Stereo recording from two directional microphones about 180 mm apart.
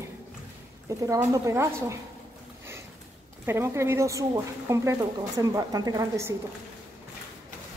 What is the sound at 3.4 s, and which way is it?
A woman's voice, 15° right (ahead or behind).